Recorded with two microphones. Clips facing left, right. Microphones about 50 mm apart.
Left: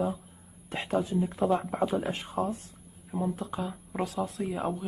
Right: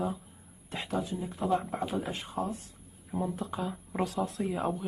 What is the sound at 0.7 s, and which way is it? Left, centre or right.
Speech, left.